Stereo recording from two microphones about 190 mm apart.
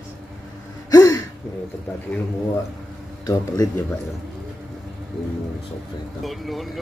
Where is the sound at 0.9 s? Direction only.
20° left (ahead or behind).